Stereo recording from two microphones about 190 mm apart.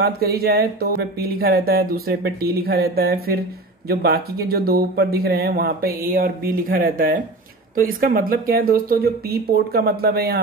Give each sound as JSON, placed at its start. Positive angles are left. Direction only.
{"t": 0.0, "sound": "speech", "side_deg": -55}